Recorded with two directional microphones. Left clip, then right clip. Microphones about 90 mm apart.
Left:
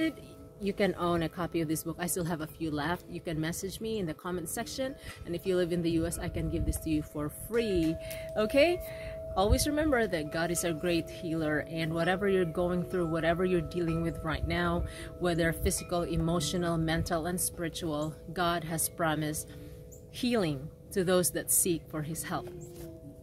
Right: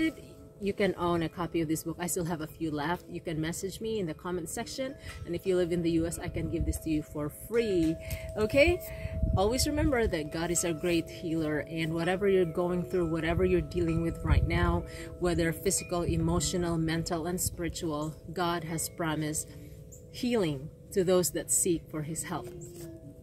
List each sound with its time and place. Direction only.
0.7 s speech: 30° left (ahead or behind)